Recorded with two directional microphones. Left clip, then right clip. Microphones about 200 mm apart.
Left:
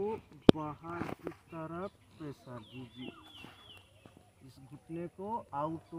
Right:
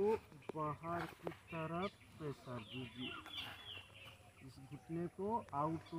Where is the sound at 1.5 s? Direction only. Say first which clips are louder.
Even; 30° left (ahead or behind).